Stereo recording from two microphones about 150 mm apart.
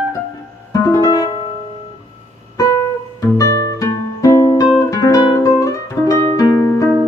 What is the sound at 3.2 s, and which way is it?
Music, 20° left (ahead or behind).